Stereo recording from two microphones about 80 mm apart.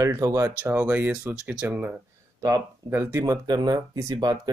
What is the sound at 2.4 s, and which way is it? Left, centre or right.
Speech, right.